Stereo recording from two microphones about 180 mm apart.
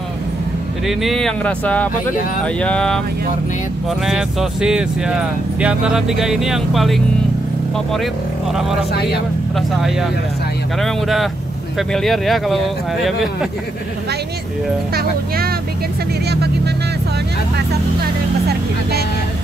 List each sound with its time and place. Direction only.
0.8 s speech: centre (ahead or behind)
4.0 s speech: centre (ahead or behind)
9.6 s speech: centre (ahead or behind)
15.0 s speech: 60° right (ahead or behind)
16.3 s vehicle: 65° right (ahead or behind)
18.5 s speech: 60° right (ahead or behind)